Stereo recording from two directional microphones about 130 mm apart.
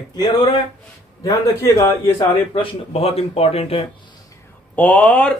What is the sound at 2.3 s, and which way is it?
Speech, 45° left (ahead or behind).